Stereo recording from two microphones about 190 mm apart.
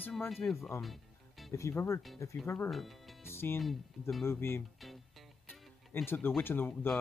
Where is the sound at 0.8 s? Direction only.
Centre (ahead or behind).